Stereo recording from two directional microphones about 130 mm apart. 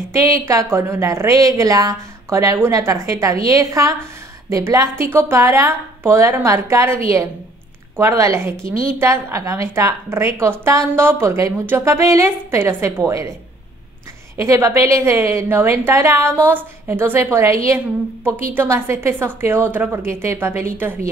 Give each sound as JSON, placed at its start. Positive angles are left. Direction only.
{"t": 0.1, "sound": "a woman's voice", "side_deg": -25}
{"t": 14.3, "sound": "a woman's voice", "side_deg": -20}